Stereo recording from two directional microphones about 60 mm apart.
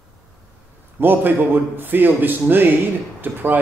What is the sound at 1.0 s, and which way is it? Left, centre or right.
A man's voice, right.